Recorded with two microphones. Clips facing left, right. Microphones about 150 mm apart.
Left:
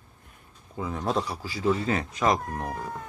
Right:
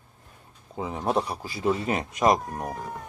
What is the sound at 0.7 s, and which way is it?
Speech, 25° right (ahead or behind).